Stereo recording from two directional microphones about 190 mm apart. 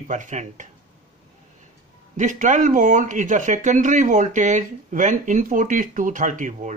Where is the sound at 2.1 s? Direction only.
40° right (ahead or behind).